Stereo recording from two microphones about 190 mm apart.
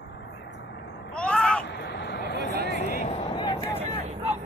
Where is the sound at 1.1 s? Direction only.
5° left (ahead or behind).